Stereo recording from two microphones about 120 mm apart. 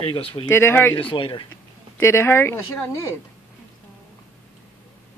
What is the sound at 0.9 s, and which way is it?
Speech, 45° left (ahead or behind).